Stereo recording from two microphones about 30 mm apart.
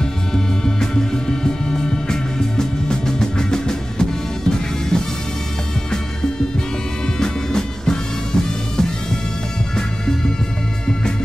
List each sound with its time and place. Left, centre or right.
0.0 s music: centre
7.2 s music: left